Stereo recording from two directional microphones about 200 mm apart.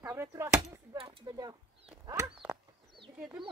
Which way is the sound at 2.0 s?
15° right (ahead or behind).